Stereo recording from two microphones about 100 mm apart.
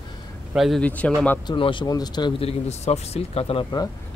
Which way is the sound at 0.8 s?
15° left (ahead or behind).